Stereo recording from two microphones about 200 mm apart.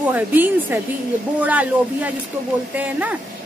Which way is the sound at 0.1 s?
10° right (ahead or behind).